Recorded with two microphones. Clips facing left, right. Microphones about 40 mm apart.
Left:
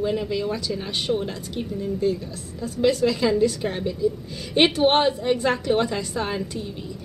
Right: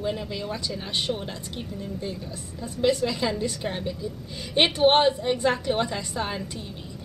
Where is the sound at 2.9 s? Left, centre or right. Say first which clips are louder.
Left 4 dB; centre.